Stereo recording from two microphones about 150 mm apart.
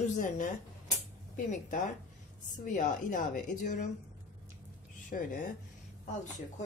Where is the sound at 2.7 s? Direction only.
55° left (ahead or behind).